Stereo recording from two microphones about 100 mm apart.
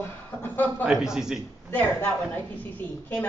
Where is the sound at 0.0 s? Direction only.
20° left (ahead or behind).